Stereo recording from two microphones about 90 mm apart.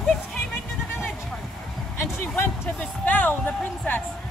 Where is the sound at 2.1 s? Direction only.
25° left (ahead or behind).